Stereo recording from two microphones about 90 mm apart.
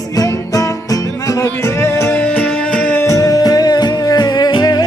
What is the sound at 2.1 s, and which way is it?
Music, 15° left (ahead or behind).